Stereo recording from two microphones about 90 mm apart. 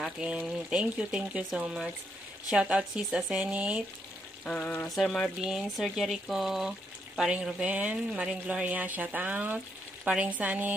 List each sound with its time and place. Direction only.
0.0 s speech: 10° right (ahead or behind)
4.5 s frying: 10° left (ahead or behind)
4.8 s speech: centre (ahead or behind); by 10.7 s 20° right (ahead or behind)